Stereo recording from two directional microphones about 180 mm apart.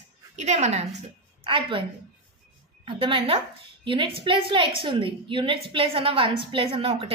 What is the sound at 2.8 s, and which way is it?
A woman's voice, 30° right (ahead or behind).